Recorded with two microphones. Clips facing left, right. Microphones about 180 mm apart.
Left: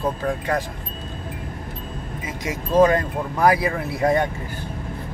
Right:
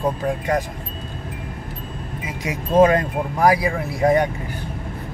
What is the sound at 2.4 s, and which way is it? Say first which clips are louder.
Speech: right 2 dB; 20° right (ahead or behind).